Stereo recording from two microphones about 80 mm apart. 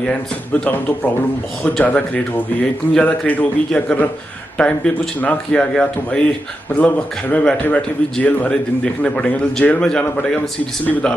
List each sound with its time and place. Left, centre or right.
0.0 s a man's voice: centre